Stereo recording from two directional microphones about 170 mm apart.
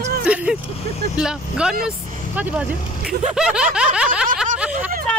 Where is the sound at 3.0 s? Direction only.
5° right (ahead or behind).